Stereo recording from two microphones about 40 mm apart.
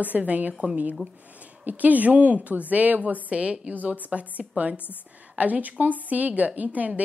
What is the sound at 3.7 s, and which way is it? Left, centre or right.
A woman's voice, right.